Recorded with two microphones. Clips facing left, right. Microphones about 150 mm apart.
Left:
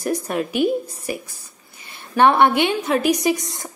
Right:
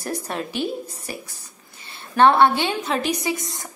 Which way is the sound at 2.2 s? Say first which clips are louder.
Left 1 dB; 15° left (ahead or behind).